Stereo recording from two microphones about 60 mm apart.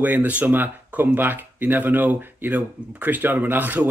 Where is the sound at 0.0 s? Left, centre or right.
Right.